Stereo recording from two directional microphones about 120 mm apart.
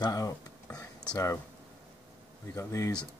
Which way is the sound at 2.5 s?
25° left (ahead or behind).